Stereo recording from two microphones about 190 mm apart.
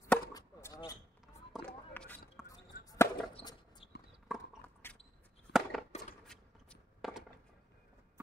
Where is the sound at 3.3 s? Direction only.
25° left (ahead or behind).